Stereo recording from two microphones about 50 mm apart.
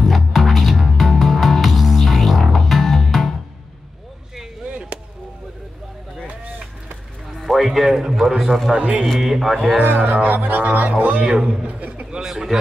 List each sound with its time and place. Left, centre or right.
0.0 s music: centre
4.6 s chop: right
6.2 s vehicle: right
7.3 s music: centre
8.3 s speech: centre
8.7 s speech: right
9.0 s speech: centre
9.8 s a man's voice: right
12.2 s speech: centre